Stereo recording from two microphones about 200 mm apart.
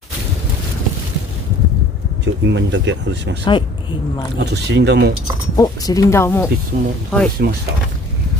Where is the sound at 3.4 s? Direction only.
25° left (ahead or behind).